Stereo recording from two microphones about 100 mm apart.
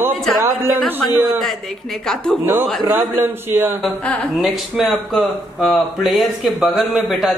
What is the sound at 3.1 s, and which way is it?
Speech, 20° right (ahead or behind).